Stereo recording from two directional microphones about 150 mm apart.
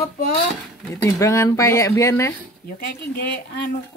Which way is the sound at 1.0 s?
20° left (ahead or behind).